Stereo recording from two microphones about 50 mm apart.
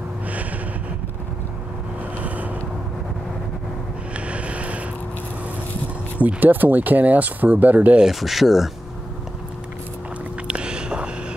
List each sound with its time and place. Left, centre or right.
2.1 s vehicle: right
4.3 s boat: right
6.1 s speech: right
8.0 s speech: centre
10.5 s a sound: centre